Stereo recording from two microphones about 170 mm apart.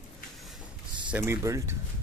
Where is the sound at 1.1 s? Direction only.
15° right (ahead or behind).